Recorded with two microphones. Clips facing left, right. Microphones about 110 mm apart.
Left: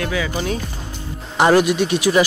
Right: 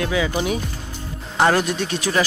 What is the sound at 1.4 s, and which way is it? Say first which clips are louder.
Speech: left 4 dB; 10° left (ahead or behind).